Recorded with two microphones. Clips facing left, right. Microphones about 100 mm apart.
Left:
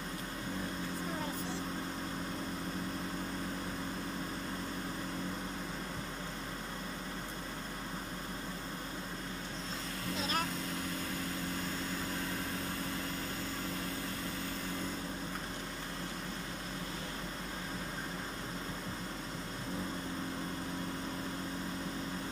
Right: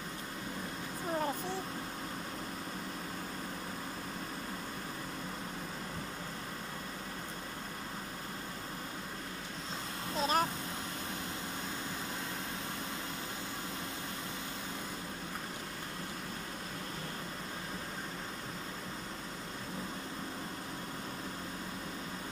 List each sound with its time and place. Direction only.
10.1 s vehicle: 40° right (ahead or behind)